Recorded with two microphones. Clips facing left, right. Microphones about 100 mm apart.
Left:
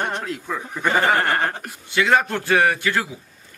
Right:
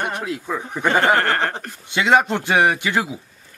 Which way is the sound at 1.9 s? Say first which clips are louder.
Right 2 dB; 20° right (ahead or behind).